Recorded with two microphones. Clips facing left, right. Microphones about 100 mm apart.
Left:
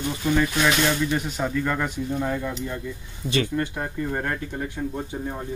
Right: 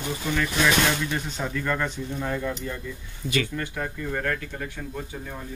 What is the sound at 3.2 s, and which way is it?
Speech, 25° left (ahead or behind).